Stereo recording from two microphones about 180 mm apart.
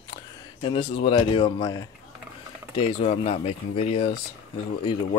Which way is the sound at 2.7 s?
35° left (ahead or behind).